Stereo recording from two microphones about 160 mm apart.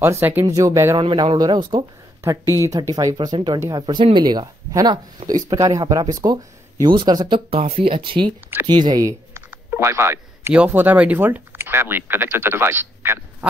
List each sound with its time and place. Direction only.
0.0 s speech: 15° right (ahead or behind)
0.9 s speech: 30° right (ahead or behind)
2.9 s speech: 20° right (ahead or behind)